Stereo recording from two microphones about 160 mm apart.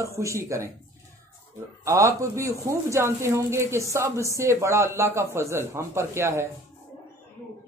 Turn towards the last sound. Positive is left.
turn(degrees=-15)  # may be behind; listen again after turning